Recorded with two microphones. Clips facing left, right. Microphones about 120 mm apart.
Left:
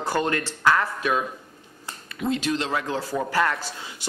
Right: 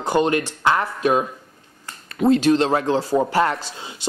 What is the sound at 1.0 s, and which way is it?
A man's voice, 35° right (ahead or behind).